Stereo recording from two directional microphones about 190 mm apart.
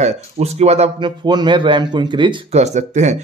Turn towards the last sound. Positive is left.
turn(degrees=-35)  # may be behind; listen again after turning